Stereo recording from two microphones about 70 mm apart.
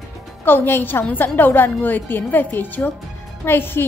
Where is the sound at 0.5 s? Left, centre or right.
Left.